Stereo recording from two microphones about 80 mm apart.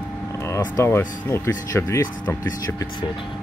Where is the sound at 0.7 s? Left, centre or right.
Left.